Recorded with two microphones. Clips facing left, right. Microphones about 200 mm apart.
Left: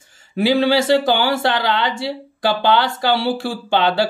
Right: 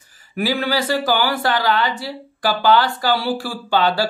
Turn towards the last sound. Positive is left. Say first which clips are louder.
# left 1 dB
turn(degrees=25)  # may be behind; listen again after turning